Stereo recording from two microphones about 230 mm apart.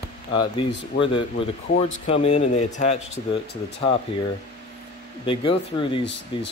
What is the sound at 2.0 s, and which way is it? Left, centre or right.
Speech, left.